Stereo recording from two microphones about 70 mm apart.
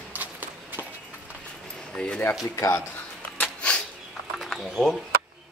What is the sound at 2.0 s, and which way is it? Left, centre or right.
Speech, centre.